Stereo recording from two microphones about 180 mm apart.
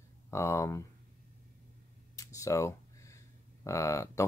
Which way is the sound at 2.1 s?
15° left (ahead or behind).